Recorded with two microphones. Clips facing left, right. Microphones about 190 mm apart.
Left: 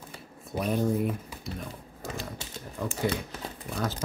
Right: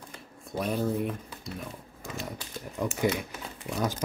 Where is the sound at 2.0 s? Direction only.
35° left (ahead or behind).